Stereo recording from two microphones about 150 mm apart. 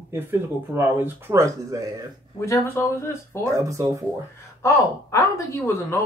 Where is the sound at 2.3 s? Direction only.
20° left (ahead or behind).